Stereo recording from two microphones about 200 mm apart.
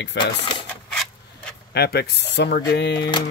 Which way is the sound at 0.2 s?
60° left (ahead or behind).